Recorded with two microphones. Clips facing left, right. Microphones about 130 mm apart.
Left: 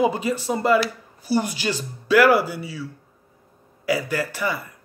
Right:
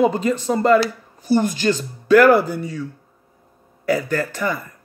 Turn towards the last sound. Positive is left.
turn(degrees=10)  # may be behind; listen again after turning